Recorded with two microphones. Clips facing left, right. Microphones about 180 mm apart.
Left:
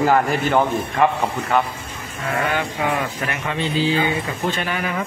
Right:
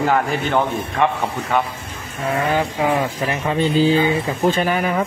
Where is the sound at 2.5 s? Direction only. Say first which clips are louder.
Right 4 dB; 30° right (ahead or behind).